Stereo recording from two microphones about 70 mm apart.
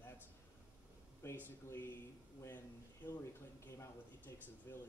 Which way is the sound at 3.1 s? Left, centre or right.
Left.